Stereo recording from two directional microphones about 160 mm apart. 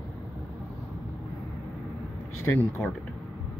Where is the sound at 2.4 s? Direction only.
15° left (ahead or behind).